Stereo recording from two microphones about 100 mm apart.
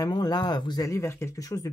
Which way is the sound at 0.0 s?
40° left (ahead or behind).